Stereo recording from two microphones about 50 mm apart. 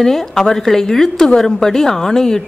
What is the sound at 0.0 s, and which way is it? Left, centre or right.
A woman's voice, centre.